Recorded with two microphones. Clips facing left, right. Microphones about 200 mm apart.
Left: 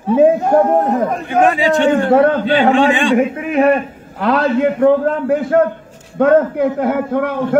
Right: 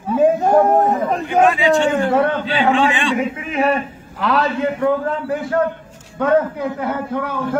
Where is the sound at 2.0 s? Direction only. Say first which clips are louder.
Left 6 dB; 50° left (ahead or behind).